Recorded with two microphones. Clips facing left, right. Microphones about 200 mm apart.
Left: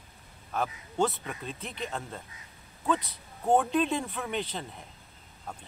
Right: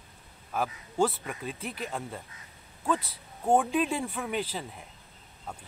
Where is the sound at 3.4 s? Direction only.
5° right (ahead or behind).